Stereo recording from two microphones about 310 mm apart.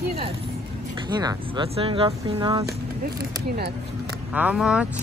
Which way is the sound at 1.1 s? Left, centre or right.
Centre.